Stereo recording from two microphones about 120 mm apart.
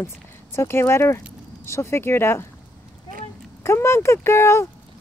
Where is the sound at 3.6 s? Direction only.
20° left (ahead or behind).